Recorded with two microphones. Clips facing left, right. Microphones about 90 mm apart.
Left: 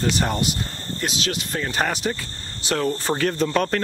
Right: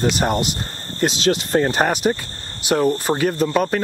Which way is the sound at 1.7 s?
20° right (ahead or behind).